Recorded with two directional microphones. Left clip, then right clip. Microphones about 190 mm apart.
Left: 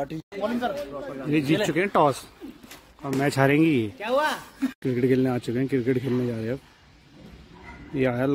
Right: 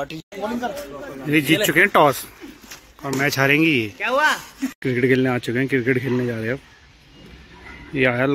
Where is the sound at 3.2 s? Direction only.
25° left (ahead or behind).